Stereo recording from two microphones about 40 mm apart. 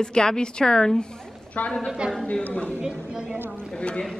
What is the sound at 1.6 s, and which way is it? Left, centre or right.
A woman's voice, left.